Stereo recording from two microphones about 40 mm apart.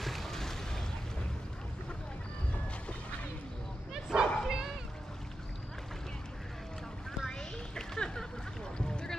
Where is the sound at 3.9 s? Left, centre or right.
Centre.